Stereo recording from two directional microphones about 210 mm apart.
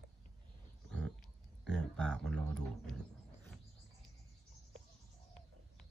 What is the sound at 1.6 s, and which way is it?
Speech, 5° left (ahead or behind).